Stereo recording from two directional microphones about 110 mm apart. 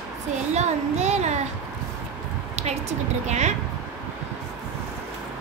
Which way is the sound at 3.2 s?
90° right.